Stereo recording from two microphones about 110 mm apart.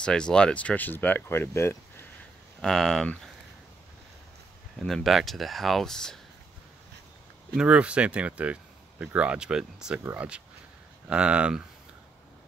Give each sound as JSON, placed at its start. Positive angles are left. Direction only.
{"t": 0.0, "sound": "speech", "side_deg": 5}
{"t": 2.6, "sound": "speech", "side_deg": 5}
{"t": 4.7, "sound": "speech", "side_deg": 0}
{"t": 7.5, "sound": "speech", "side_deg": -10}